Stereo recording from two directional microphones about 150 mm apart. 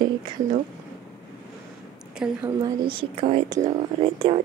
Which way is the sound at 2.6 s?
30° right (ahead or behind).